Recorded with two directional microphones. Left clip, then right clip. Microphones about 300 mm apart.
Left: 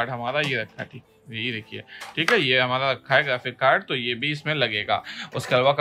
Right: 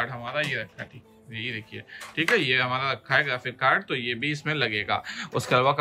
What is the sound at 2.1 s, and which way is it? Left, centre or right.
Speech, centre.